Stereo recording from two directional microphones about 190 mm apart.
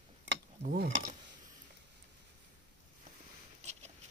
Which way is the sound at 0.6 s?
40° right (ahead or behind).